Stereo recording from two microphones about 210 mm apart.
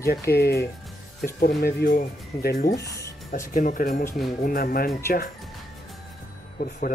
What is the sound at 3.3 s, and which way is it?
Speech, 40° left (ahead or behind).